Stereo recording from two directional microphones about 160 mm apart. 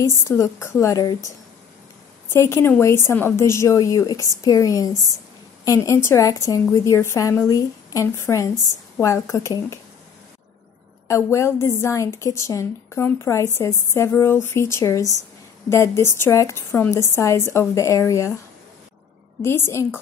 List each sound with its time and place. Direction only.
0.0 s a woman's voice: 15° left (ahead or behind)
11.1 s a woman's voice: 20° left (ahead or behind)
19.4 s a woman's voice: 15° left (ahead or behind)